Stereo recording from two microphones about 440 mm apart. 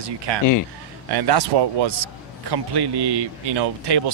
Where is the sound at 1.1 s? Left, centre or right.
Right.